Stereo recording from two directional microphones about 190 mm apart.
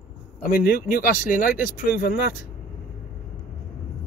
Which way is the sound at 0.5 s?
50° left (ahead or behind).